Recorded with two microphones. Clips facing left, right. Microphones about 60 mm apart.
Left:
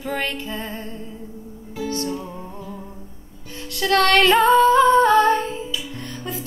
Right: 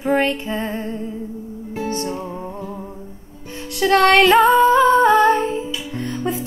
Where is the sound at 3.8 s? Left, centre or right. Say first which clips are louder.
Right 4 dB; right.